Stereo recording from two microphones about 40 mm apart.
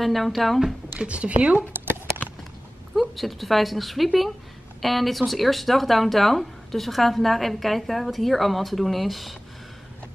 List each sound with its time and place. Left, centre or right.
0.0 s speech: centre
0.9 s speech: right
3.0 s speech: centre